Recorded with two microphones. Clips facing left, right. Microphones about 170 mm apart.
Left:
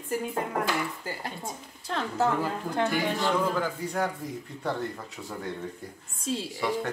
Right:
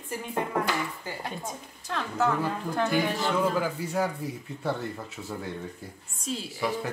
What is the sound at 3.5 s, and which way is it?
Speech, 5° right (ahead or behind).